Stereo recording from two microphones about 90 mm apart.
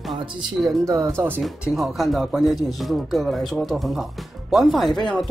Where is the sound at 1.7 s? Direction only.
Centre (ahead or behind).